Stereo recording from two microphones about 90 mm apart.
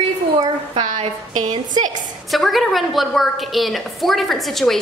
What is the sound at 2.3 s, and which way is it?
A woman's voice, centre (ahead or behind).